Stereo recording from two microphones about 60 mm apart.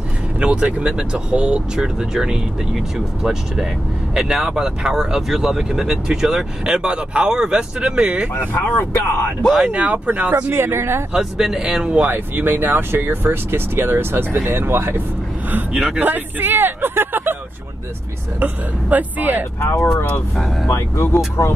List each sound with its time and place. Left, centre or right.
0.4 s speech: right
8.4 s speech: left
9.7 s speech: right
10.5 s speech: right
11.1 s speech: centre
12.0 s speech: right
15.7 s speech: centre
16.0 s speech: right
18.4 s speech: right
19.6 s speech: left